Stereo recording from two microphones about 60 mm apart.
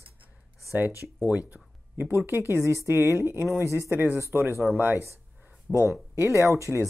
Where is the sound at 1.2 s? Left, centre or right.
Right.